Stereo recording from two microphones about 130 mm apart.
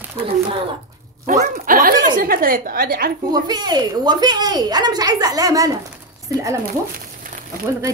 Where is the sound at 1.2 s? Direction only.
75° right (ahead or behind); by 3.1 s 90° right.